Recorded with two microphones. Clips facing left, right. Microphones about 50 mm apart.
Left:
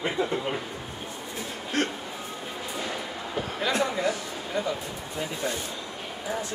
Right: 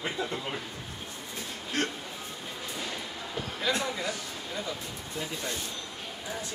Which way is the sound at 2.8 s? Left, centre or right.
Left.